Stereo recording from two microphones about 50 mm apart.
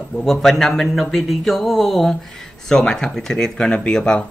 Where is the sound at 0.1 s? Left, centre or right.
Centre.